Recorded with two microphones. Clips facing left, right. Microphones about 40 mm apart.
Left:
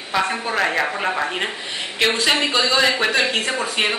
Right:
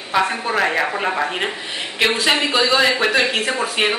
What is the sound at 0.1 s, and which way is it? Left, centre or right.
Speech, centre.